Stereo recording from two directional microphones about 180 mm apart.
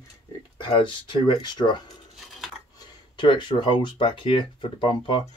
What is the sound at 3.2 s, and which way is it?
Speech, 25° left (ahead or behind).